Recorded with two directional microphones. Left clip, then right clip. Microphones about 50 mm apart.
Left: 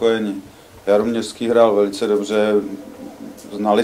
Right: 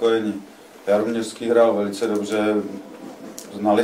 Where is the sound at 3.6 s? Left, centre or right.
Left.